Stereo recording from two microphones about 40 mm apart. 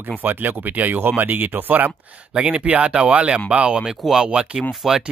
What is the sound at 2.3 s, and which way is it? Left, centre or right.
Speech, right.